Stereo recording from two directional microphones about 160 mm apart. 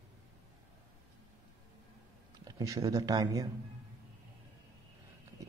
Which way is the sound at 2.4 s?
20° right (ahead or behind).